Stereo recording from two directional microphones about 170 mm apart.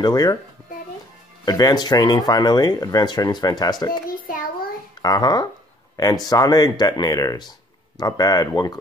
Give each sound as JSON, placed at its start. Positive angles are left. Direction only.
{"t": 0.0, "sound": "speech", "side_deg": 25}
{"t": 1.4, "sound": "speech", "side_deg": 25}
{"t": 5.0, "sound": "speech", "side_deg": 25}